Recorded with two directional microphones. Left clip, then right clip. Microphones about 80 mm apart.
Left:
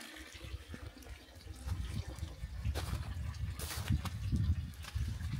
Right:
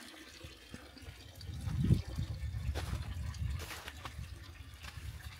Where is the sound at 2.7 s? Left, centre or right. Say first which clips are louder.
Even; centre.